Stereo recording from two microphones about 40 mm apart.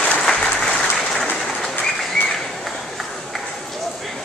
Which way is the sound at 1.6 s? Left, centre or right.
Centre.